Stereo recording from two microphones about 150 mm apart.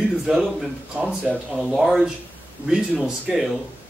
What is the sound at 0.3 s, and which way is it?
Speech, centre (ahead or behind).